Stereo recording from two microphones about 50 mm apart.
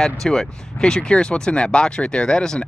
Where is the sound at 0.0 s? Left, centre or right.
Centre.